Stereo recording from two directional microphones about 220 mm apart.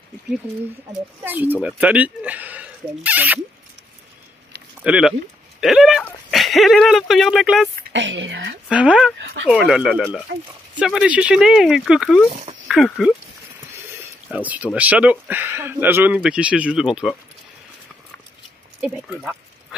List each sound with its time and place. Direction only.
1.2 s speech: 10° right (ahead or behind)
4.8 s speech: 5° right (ahead or behind)
7.9 s a woman's voice: 55° right (ahead or behind)
8.6 s speech: 5° right (ahead or behind)
12.3 s speech: 30° right (ahead or behind)
12.6 s speech: centre (ahead or behind)
14.3 s speech: 5° right (ahead or behind)
18.8 s speech: 5° right (ahead or behind)